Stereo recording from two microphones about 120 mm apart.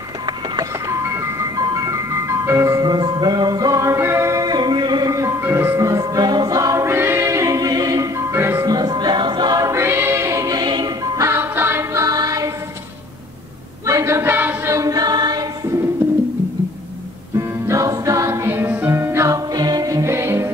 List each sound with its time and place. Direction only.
0.6 s ice cream truck: 25° right (ahead or behind)
8.6 s music: 35° right (ahead or behind)
11.2 s music: 20° right (ahead or behind)
13.8 s choir: 25° right (ahead or behind)
17.4 s music: 25° right (ahead or behind)